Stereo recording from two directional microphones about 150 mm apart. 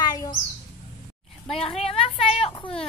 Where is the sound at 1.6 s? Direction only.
40° left (ahead or behind).